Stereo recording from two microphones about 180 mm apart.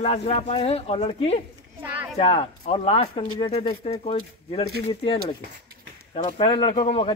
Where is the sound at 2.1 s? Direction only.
30° left (ahead or behind).